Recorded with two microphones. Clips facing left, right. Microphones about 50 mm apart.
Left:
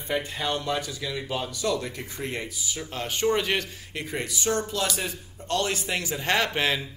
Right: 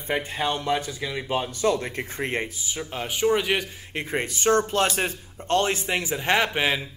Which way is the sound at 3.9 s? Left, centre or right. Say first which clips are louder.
Right 6 dB; right.